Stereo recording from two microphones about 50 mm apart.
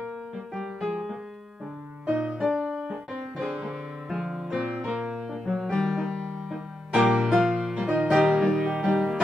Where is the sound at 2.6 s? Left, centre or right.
Centre.